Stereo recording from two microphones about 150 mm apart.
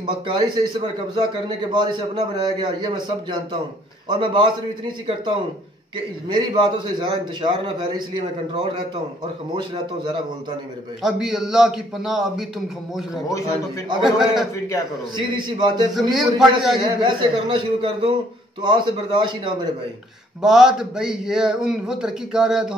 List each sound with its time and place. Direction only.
0.0 s a man's voice: 30° right (ahead or behind)
6.2 s a man's voice: 30° right (ahead or behind)
11.0 s a man's voice: 5° right (ahead or behind)
14.0 s a man's voice: centre (ahead or behind)
15.1 s a man's voice: 30° right (ahead or behind)
15.9 s a man's voice: centre (ahead or behind)
16.8 s a man's voice: 35° right (ahead or behind)
20.4 s a man's voice: 5° right (ahead or behind)